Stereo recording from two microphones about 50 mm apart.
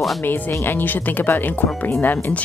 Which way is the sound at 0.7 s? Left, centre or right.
Left.